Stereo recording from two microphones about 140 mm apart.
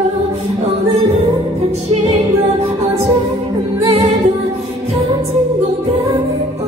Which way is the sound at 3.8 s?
45° right (ahead or behind).